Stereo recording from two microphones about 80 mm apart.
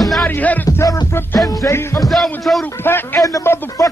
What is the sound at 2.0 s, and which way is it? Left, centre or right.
Speech, centre.